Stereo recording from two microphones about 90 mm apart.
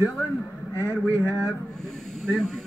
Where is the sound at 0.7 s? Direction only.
30° right (ahead or behind).